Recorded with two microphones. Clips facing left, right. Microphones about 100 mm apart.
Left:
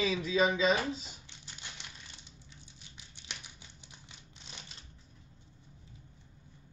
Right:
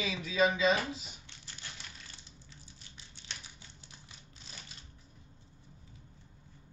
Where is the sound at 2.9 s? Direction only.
15° left (ahead or behind).